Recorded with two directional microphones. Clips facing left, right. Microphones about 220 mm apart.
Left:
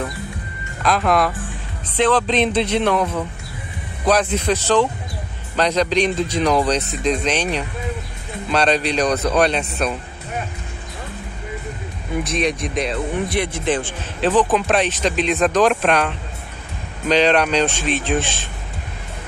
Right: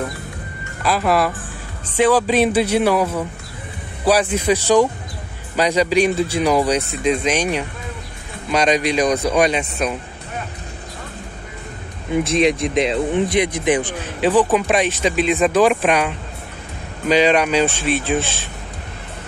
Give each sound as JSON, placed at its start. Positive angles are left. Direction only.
{"t": 0.8, "sound": "speech", "side_deg": -5}
{"t": 12.5, "sound": "speech", "side_deg": -25}